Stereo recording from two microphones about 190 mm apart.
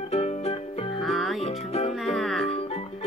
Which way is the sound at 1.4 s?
35° left (ahead or behind).